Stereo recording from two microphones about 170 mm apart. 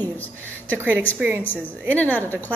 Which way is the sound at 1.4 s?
10° left (ahead or behind).